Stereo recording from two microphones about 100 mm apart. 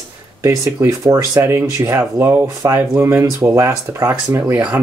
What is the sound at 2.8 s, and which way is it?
Speech, 20° right (ahead or behind).